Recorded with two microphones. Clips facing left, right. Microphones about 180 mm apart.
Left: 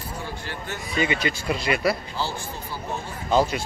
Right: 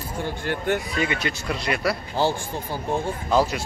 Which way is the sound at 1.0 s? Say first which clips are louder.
Left 1 dB; centre (ahead or behind).